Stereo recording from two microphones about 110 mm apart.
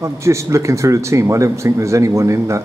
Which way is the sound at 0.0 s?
25° right (ahead or behind).